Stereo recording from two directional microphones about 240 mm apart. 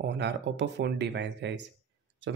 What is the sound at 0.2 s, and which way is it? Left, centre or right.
Speech, right.